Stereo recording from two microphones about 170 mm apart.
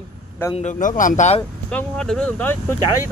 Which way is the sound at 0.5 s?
50° left (ahead or behind).